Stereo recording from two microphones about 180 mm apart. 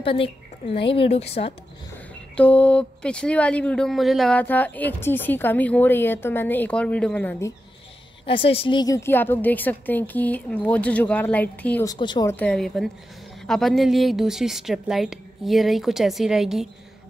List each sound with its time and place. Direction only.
0.0 s a woman's voice: 30° left (ahead or behind)
2.3 s speech: 5° left (ahead or behind)
8.3 s speech: 30° left (ahead or behind); by 11.9 s 10° left (ahead or behind)
11.9 s speech: 25° left (ahead or behind)
12.3 s a woman's voice: 5° left (ahead or behind)